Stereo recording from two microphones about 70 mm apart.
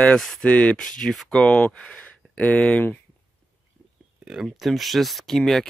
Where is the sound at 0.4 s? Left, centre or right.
Centre.